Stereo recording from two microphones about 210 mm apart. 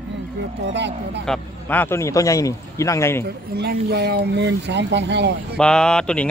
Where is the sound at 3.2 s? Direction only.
50° right (ahead or behind).